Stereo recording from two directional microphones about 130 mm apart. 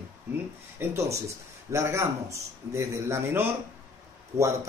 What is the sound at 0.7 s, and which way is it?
Speech, 20° right (ahead or behind).